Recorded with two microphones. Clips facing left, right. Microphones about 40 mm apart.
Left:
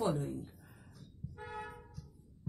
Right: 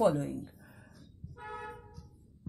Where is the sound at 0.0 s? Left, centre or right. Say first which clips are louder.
Right 7 dB; right.